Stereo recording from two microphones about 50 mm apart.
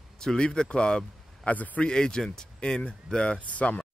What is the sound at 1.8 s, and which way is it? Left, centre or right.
Speech, centre.